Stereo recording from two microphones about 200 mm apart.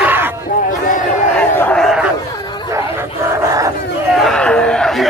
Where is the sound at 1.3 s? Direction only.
10° left (ahead or behind).